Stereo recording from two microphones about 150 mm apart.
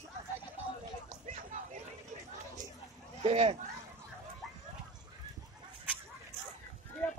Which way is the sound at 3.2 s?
45° right (ahead or behind).